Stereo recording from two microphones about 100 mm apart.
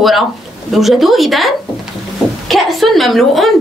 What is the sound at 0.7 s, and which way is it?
Speech, centre (ahead or behind).